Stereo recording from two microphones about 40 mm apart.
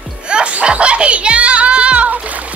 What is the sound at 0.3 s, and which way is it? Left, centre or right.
Music, right.